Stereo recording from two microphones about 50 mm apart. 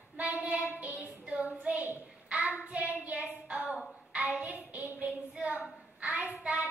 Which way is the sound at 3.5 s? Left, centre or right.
Right.